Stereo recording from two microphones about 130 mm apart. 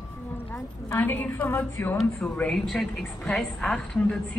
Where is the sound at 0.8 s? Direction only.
15° left (ahead or behind).